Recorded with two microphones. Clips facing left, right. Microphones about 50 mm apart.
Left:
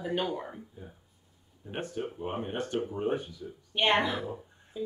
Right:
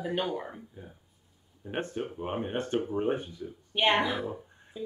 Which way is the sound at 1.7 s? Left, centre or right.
Right.